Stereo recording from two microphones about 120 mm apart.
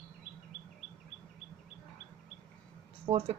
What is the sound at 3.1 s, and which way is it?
Speech, 50° right (ahead or behind).